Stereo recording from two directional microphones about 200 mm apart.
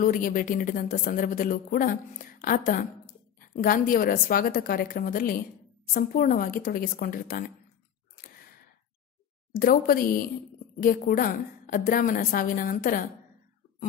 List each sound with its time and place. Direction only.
0.0 s a woman's voice: 45° left (ahead or behind)
9.6 s a woman's voice: 45° left (ahead or behind)